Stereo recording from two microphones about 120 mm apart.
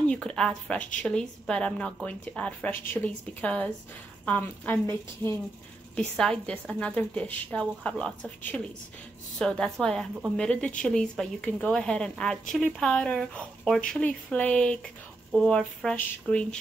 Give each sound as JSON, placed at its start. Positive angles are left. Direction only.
{"t": 0.0, "sound": "a woman's voice", "side_deg": 5}
{"t": 5.9, "sound": "speech", "side_deg": 5}